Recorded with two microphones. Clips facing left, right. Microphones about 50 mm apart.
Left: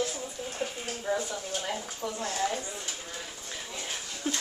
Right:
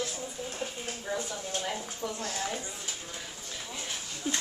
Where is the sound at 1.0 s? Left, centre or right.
Centre.